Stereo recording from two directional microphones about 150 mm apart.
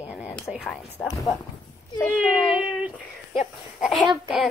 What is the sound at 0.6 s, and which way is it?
Speech, 10° left (ahead or behind).